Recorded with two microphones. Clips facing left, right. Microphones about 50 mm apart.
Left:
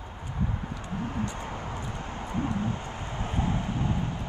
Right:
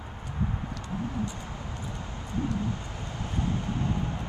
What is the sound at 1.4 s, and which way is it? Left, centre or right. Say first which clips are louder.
Vehicle: left 3 dB; left.